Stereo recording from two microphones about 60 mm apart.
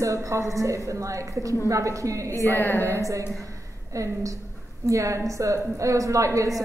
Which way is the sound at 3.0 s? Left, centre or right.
Right.